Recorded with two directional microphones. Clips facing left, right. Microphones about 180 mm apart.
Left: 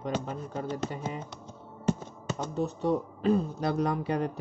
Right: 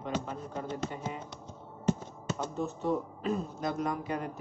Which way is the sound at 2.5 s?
35° left (ahead or behind).